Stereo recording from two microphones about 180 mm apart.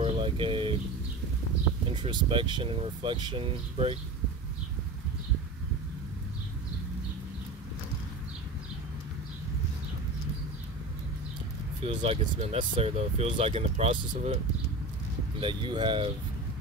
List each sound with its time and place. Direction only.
0.0 s vehicle: 30° right (ahead or behind)
1.9 s speech: 25° right (ahead or behind)
11.8 s speech: 30° right (ahead or behind)
15.4 s speech: 25° right (ahead or behind)